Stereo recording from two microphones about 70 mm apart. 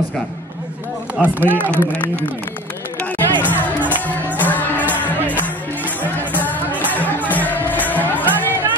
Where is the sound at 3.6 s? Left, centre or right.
Left.